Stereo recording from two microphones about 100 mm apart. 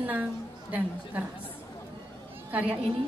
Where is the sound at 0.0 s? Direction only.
15° right (ahead or behind).